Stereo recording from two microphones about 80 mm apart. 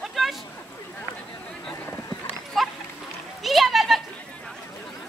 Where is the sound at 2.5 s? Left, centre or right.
Centre.